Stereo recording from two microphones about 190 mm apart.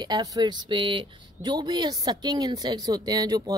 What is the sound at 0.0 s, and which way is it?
Speech, 20° right (ahead or behind).